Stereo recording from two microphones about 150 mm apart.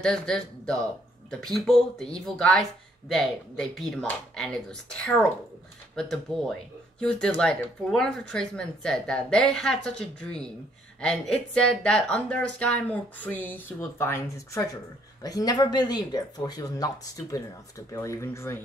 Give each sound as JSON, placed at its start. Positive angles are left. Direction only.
{"t": 0.0, "sound": "speech", "side_deg": 5}